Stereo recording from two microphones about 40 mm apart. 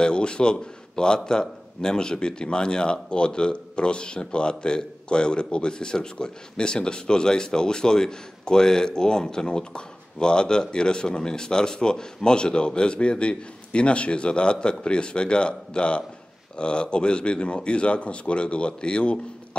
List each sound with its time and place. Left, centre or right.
0.0 s a man's voice: left